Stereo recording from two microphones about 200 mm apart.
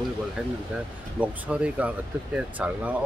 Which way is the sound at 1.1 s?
5° right (ahead or behind).